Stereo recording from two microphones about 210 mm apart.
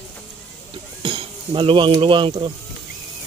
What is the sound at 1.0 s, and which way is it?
Speech, 25° right (ahead or behind).